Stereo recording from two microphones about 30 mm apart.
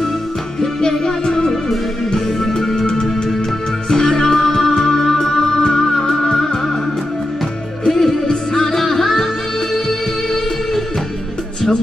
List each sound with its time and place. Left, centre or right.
0.6 s music: centre
1.5 s music: centre
3.9 s music: centre
6.3 s music: centre
7.8 s music: centre